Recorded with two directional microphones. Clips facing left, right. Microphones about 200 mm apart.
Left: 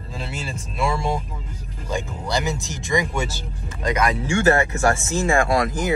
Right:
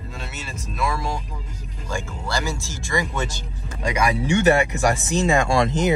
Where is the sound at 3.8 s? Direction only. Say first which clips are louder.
Even; 10° right (ahead or behind).